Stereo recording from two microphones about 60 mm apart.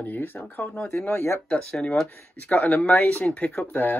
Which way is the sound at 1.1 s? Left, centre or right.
Left.